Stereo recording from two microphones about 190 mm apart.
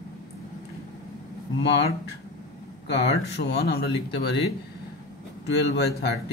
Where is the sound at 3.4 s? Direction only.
65° left (ahead or behind).